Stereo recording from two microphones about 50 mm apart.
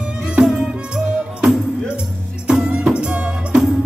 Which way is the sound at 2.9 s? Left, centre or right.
Right.